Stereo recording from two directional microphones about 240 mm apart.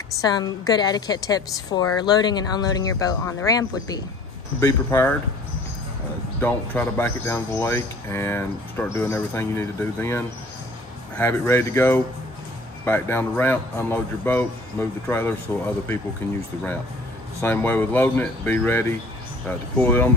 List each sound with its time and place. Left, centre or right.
0.2 s speech: centre
6.4 s speech: centre
17.4 s speech: centre